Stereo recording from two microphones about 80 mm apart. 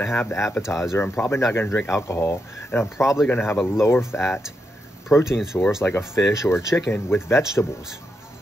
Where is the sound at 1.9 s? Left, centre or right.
Left.